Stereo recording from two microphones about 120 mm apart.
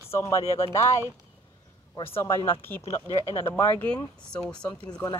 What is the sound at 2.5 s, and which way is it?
Speech, 20° left (ahead or behind).